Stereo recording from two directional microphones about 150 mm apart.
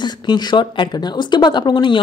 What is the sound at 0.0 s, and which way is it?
Speech, 30° left (ahead or behind).